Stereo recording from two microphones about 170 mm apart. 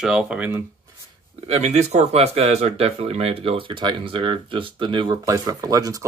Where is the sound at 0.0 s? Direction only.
5° right (ahead or behind).